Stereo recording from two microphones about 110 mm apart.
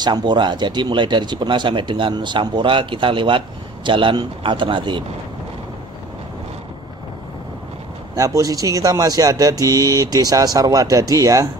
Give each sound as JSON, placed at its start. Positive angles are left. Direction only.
{"t": 0.0, "sound": "speech", "side_deg": -40}
{"t": 8.2, "sound": "speech", "side_deg": -30}